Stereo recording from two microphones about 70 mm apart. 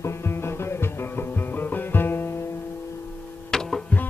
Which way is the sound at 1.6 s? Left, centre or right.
Left.